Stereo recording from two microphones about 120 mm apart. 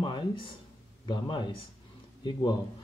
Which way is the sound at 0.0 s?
45° left (ahead or behind).